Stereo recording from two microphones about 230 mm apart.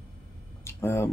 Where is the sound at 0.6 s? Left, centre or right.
Centre.